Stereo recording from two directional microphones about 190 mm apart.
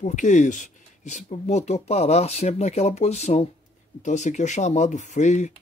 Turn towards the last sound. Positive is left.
turn(degrees=40)  # may be behind; listen again after turning